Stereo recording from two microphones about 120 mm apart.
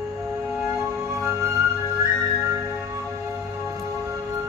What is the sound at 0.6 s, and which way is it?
Music, 20° right (ahead or behind).